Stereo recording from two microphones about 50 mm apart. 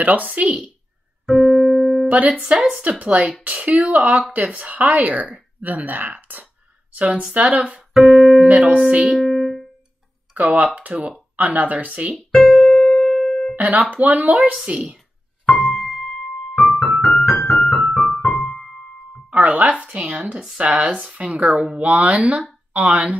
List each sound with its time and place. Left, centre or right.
0.0 s speech: right
1.2 s keyboard: centre
2.0 s speech: right
7.9 s piano: centre
8.5 s speech: right
9.1 s music: centre
10.3 s speech: right
12.3 s music: centre
13.6 s speech: right
15.7 s music: centre
17.1 s music: centre
19.3 s speech: right
20.0 s speech: centre